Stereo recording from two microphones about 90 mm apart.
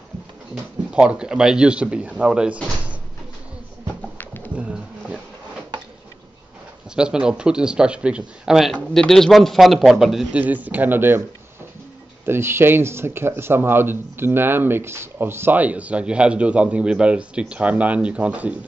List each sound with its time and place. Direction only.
0.9 s speech: 10° right (ahead or behind)
4.6 s wild animals: 15° right (ahead or behind)
7.0 s speech: 10° right (ahead or behind)
8.9 s a man's voice: 5° left (ahead or behind)
10.3 s a man's voice: 20° right (ahead or behind)
12.3 s a man's voice: 30° right (ahead or behind)